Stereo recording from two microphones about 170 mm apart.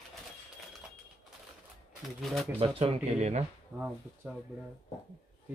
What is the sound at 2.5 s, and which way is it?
Speech, 35° right (ahead or behind).